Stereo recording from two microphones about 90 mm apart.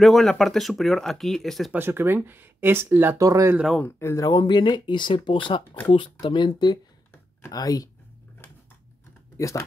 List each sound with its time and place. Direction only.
0.0 s speech: centre (ahead or behind)
1.7 s speech: 25° right (ahead or behind)
3.2 s speech: 35° right (ahead or behind)
3.8 s speech: 25° left (ahead or behind)
4.4 s speech: 60° left (ahead or behind)
7.5 s speech: 45° left (ahead or behind)
9.4 s speech: 35° left (ahead or behind)